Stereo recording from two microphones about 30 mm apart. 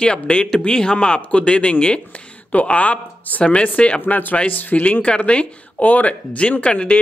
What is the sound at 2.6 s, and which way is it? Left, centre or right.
Speech, left.